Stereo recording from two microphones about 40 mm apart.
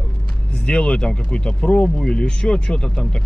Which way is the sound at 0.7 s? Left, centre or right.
Left.